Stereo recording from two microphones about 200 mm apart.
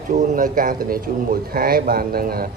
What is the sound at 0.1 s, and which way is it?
A man's voice, 40° right (ahead or behind).